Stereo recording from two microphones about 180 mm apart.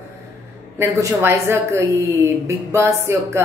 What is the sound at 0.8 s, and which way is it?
A woman's voice, 15° right (ahead or behind).